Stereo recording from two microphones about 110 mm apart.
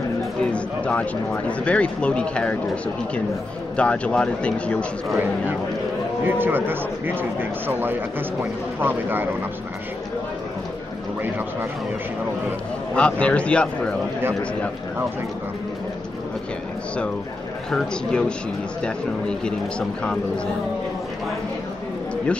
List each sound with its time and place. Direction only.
0.4 s speech: 10° left (ahead or behind)
6.2 s speech: 20° right (ahead or behind)
12.9 s speech: 10° left (ahead or behind)
17.6 s speech: 5° left (ahead or behind)